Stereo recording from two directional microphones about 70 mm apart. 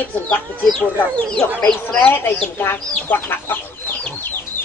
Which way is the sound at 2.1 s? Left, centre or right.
Left.